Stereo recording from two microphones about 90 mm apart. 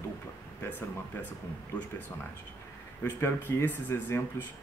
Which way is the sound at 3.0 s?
25° left (ahead or behind).